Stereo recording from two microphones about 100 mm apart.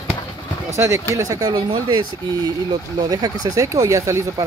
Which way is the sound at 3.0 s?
40° right (ahead or behind).